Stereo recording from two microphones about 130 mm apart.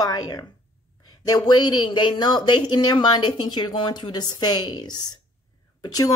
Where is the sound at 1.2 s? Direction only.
35° left (ahead or behind).